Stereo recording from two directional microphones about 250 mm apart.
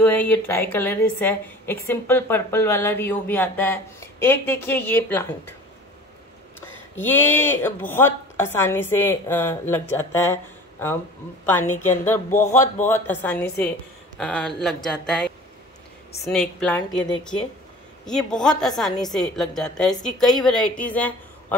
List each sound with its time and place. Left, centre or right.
0.0 s a woman's voice: centre
7.0 s a woman's voice: centre
12.3 s speech: left
12.8 s a woman's voice: centre